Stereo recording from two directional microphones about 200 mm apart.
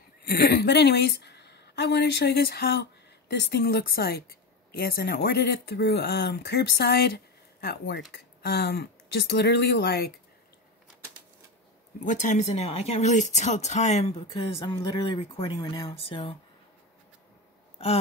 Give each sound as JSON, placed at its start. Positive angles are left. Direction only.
{"t": 0.2, "sound": "a woman's voice", "side_deg": 50}
{"t": 12.0, "sound": "speech", "side_deg": 40}
{"t": 14.3, "sound": "speech", "side_deg": 20}